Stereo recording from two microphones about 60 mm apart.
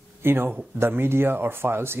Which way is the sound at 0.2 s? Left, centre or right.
Right.